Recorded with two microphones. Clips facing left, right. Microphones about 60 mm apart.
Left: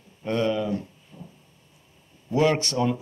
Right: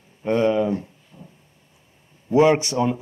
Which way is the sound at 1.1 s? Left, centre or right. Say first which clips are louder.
Left 1 dB; right.